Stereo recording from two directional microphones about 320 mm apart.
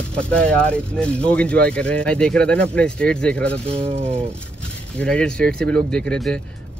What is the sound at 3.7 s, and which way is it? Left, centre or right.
Speech, centre.